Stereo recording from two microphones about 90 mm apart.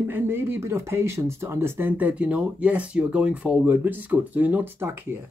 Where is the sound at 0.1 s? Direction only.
25° right (ahead or behind).